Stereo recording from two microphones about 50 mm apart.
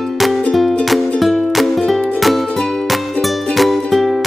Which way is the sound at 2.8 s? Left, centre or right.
Centre.